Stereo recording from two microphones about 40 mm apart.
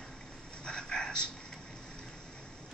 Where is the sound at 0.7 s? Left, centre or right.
Left.